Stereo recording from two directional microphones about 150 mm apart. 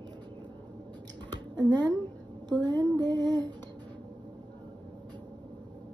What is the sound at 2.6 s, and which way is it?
Speech, 30° right (ahead or behind).